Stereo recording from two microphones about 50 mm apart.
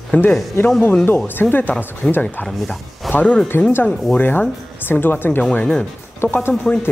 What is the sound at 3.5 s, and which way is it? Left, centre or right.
Speech, left.